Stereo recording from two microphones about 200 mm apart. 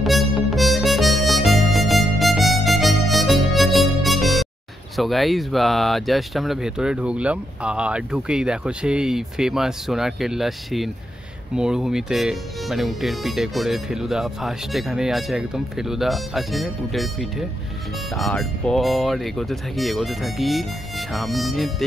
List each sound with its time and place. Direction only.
0.0 s harmonica: centre (ahead or behind)
4.9 s speech: centre (ahead or behind)